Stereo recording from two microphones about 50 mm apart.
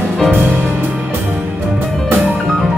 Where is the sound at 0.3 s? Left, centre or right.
Right.